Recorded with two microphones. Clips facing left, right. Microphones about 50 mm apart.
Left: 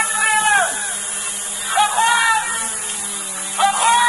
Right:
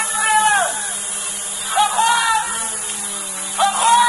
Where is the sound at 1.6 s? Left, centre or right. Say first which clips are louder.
Even; centre.